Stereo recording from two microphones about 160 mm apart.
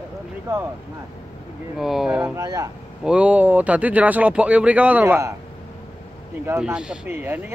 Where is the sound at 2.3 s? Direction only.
20° right (ahead or behind).